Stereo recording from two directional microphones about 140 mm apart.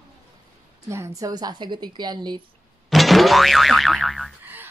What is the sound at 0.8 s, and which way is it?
Speech, 20° right (ahead or behind).